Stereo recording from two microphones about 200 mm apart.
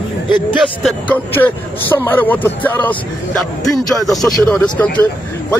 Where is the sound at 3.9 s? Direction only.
Centre (ahead or behind).